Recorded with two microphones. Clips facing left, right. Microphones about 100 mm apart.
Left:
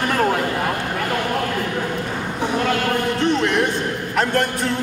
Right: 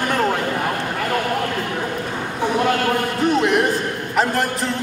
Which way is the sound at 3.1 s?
5° right (ahead or behind).